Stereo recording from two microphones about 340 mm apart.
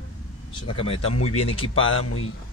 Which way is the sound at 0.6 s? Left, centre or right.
Centre.